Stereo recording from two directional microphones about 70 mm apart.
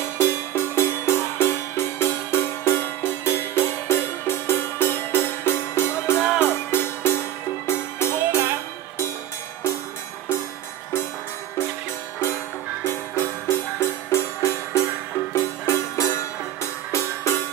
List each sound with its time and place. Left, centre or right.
0.2 s music: left
12.8 s music: left